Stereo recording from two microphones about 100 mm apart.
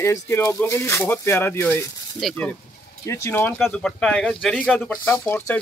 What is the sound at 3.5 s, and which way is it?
Speech, 5° left (ahead or behind).